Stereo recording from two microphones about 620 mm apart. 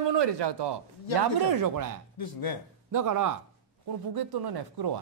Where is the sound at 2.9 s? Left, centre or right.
Right.